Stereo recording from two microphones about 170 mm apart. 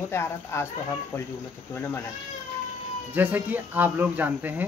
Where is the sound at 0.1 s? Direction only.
15° left (ahead or behind).